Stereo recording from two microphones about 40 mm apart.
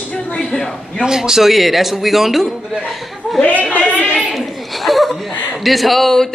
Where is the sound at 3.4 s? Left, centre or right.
Left.